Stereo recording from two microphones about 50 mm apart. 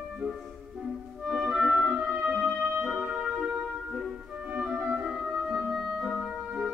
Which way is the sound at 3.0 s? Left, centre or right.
Right.